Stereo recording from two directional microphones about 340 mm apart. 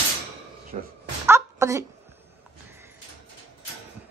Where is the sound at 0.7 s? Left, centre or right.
Centre.